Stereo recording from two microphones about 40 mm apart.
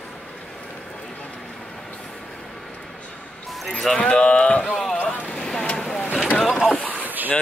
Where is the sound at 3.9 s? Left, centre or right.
Left.